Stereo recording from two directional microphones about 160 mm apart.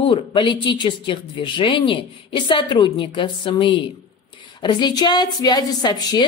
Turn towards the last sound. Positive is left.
turn(degrees=25)  # may be behind; listen again after turning